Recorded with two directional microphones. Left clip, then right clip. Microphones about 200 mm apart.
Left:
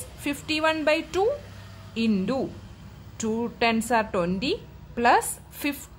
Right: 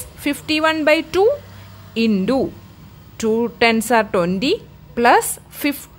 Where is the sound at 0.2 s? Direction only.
25° right (ahead or behind).